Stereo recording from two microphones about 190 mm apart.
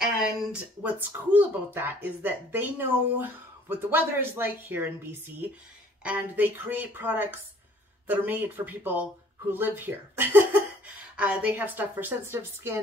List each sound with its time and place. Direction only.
0.0 s speech: 5° right (ahead or behind)